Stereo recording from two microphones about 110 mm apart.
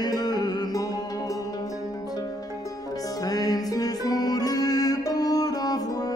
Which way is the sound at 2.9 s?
35° left (ahead or behind).